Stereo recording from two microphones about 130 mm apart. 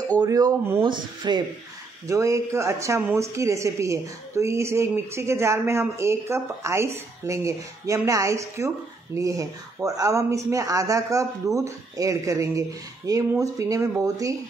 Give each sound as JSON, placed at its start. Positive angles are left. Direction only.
{"t": 0.2, "sound": "speech", "side_deg": -25}
{"t": 0.8, "sound": "speech", "side_deg": -35}
{"t": 2.0, "sound": "speech", "side_deg": -25}